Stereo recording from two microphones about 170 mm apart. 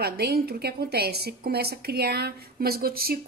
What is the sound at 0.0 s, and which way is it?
A woman's voice, 70° right (ahead or behind).